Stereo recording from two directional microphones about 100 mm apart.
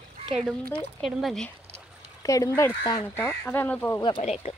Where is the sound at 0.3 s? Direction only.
Centre (ahead or behind).